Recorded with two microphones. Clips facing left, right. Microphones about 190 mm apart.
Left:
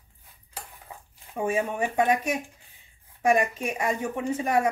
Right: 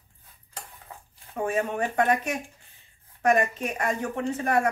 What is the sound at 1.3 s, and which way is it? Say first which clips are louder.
Speech: even; 10° left (ahead or behind).